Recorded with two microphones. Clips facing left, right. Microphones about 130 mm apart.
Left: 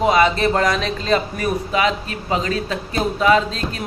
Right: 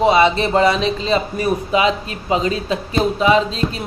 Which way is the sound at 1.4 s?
30° right (ahead or behind).